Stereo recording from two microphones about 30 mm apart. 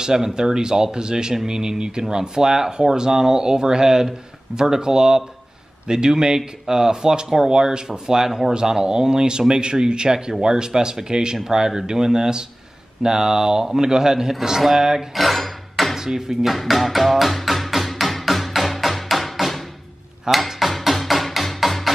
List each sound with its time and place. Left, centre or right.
0.0 s speech: right
8.3 s speech: centre
8.5 s speech: right
15.1 s a sound: centre
16.0 s speech: centre
16.5 s music: centre
20.2 s dishes: centre
20.8 s music: centre